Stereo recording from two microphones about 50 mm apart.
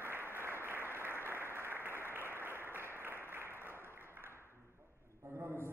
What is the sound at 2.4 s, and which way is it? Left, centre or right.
Applause, right.